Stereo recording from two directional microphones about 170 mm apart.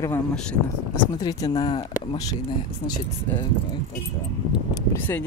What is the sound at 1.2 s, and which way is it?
Speech, 20° left (ahead or behind).